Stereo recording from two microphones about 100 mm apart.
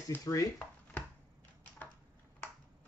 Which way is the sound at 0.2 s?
35° left (ahead or behind).